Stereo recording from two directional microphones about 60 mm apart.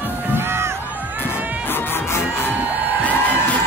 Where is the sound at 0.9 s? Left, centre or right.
Right.